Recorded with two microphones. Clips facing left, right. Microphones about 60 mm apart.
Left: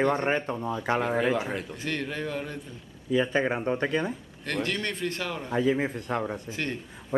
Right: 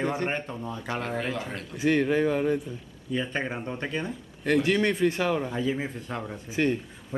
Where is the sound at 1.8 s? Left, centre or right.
Centre.